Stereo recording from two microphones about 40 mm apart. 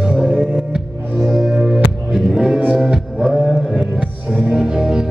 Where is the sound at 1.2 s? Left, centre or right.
Centre.